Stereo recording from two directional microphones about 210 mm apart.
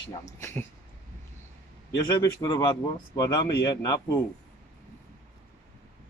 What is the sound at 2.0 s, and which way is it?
A man's voice, 15° left (ahead or behind).